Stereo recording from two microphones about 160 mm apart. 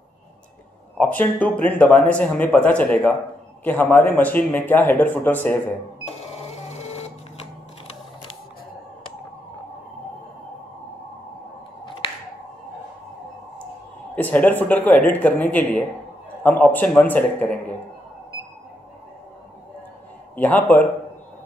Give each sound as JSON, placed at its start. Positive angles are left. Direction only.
{"t": 0.9, "sound": "speech", "side_deg": 10}
{"t": 6.0, "sound": "cash register", "side_deg": 40}
{"t": 11.8, "sound": "finger snapping", "side_deg": 30}
{"t": 14.1, "sound": "speech", "side_deg": 10}
{"t": 20.3, "sound": "speech", "side_deg": 10}